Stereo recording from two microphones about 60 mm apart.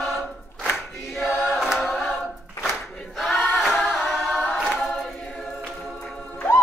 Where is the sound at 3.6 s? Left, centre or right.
Centre.